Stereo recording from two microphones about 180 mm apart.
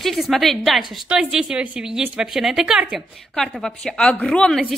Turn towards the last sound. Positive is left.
turn(degrees=0)  # may be behind; listen again after turning